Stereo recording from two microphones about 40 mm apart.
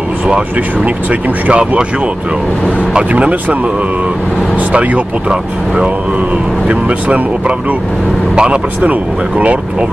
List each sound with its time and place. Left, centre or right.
1.5 s speech: right
3.1 s speech: right
6.7 s speech: right